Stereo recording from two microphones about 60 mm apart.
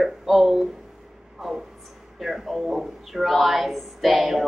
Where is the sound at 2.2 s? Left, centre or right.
Centre.